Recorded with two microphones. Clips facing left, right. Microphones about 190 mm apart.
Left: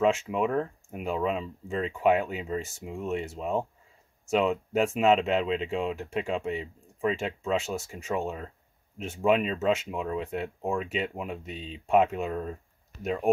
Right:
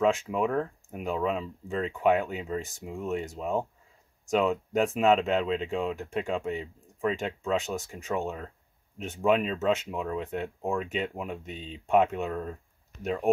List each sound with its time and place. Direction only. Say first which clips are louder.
0.0 s speech: even; 5° left (ahead or behind)